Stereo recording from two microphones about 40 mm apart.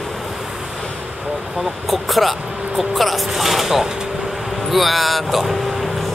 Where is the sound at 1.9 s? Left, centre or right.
Centre.